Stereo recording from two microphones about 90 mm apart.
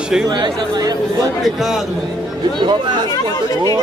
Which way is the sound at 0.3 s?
50° right (ahead or behind).